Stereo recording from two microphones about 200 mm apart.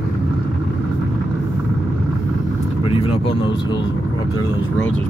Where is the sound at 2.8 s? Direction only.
30° left (ahead or behind).